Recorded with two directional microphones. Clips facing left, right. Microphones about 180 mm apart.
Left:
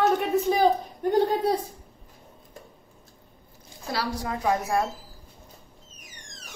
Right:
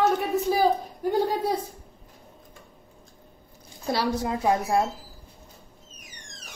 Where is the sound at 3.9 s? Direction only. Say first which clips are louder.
Right 3 dB; 25° right (ahead or behind).